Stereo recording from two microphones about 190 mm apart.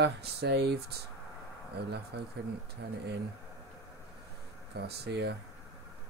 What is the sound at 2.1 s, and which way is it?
Speech, 60° right (ahead or behind).